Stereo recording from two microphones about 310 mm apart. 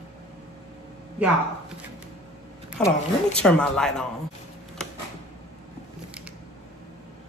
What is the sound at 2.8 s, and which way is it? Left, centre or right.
A woman's voice, centre.